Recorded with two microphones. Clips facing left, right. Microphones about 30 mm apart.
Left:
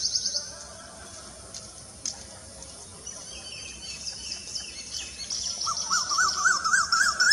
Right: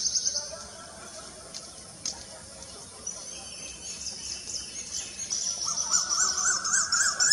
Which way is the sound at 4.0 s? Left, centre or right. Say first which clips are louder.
Left 1 dB; left.